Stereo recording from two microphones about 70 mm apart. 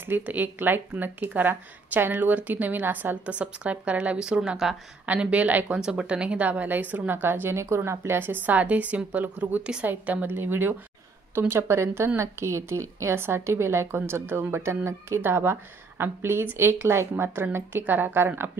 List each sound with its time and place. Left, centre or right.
0.2 s a woman's voice: right; by 4.7 s centre
5.0 s a woman's voice: centre
5.8 s a woman's voice: centre
9.6 s a woman's voice: centre; by 18.5 s right